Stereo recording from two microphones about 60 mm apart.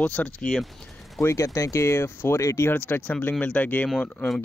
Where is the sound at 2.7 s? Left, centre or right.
Left.